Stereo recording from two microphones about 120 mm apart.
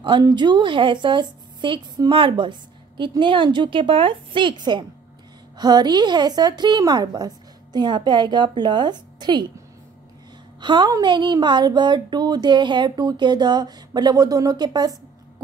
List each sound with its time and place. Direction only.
0.0 s a woman's voice: 35° right (ahead or behind)
10.6 s a woman's voice: 40° right (ahead or behind)